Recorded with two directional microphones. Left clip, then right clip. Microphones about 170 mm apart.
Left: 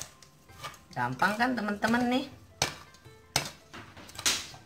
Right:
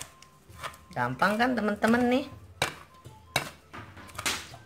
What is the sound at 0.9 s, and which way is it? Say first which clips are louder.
Speech: right 2 dB; 50° right (ahead or behind).